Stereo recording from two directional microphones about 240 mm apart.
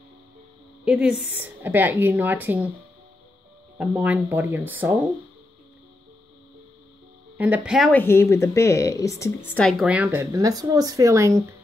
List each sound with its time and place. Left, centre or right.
0.8 s a woman's voice: centre
3.7 s a woman's voice: centre
7.3 s speech: centre